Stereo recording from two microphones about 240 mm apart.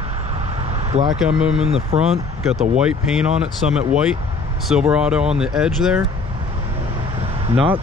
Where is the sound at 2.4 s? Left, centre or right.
Centre.